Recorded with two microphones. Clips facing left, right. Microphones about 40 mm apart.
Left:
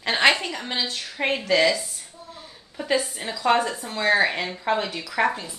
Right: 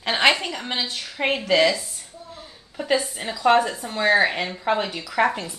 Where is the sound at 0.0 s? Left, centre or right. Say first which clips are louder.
Even; centre.